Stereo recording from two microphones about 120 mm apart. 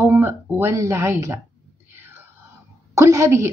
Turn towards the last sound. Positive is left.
turn(degrees=-25)  # may be behind; listen again after turning